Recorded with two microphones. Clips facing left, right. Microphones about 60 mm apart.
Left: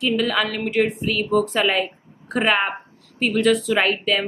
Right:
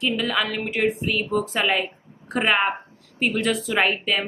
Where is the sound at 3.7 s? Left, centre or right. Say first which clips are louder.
Left 2 dB; centre.